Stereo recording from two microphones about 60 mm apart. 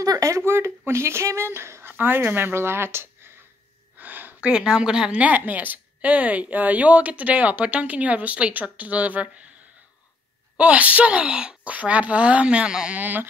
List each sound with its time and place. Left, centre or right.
0.0 s a sound: right
0.4 s speech: right
4.0 s a sound: right
4.5 s a woman's voice: centre
5.2 s a woman's voice: right
10.6 s a woman's voice: right
13.0 s a woman's voice: right